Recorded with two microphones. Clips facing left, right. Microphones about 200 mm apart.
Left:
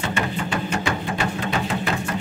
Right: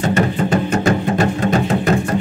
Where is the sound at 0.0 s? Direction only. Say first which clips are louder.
Right 9 dB; 40° right (ahead or behind).